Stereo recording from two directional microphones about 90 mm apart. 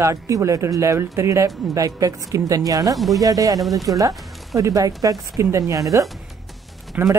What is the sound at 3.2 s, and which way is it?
Speech, 40° right (ahead or behind).